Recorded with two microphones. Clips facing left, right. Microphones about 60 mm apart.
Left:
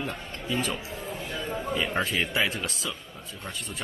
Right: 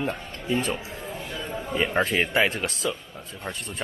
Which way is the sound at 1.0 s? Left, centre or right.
Centre.